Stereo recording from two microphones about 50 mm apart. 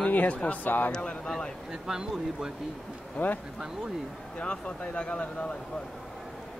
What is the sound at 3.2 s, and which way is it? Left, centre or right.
Speech, centre.